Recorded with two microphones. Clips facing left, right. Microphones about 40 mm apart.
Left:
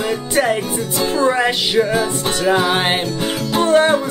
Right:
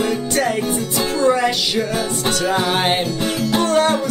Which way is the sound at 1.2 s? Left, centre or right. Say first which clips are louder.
Even; left.